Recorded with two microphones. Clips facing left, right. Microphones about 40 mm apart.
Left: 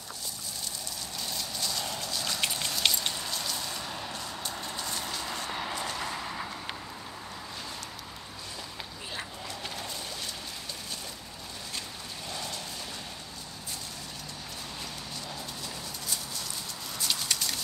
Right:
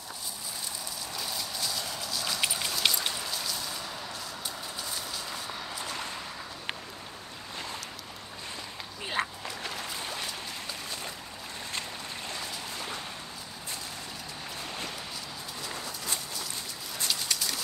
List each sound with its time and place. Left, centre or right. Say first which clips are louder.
1.1 s horse: right 1 dB; centre
5.5 s vehicle: left 3 dB; left
9.2 s a sound: right 11 dB; right
17.1 s keys jangling: left 1 dB; centre